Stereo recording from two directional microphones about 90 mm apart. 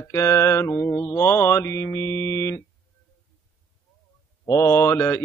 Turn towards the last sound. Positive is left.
turn(degrees=30)  # may be behind; listen again after turning